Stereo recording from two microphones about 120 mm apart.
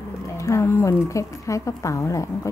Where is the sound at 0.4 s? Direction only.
25° left (ahead or behind).